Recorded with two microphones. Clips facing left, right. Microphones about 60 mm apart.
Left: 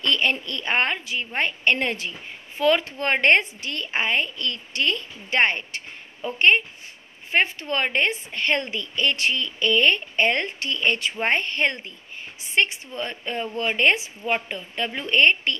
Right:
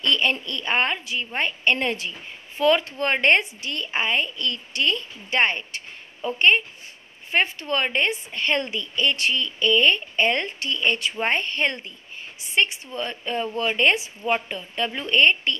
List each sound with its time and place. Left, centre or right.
0.0 s a woman's voice: left